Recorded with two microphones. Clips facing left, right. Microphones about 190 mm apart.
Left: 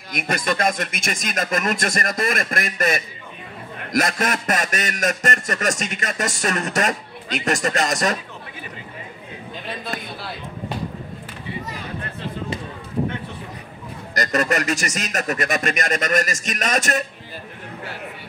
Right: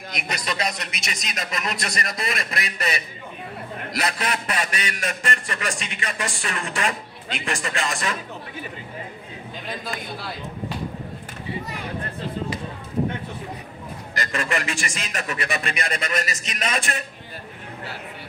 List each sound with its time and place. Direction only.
0.1 s a man's voice: 50° left (ahead or behind)
14.1 s a man's voice: 40° left (ahead or behind)